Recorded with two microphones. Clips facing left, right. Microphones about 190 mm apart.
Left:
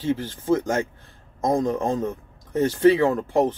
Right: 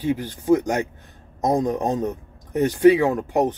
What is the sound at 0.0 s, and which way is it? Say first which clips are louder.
Speech: right 1 dB; 15° right (ahead or behind).